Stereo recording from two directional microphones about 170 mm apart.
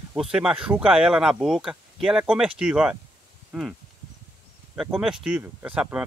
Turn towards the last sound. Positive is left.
turn(degrees=-5)  # may be behind; listen again after turning